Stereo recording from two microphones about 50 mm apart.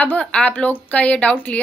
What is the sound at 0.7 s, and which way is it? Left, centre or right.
Speech, left.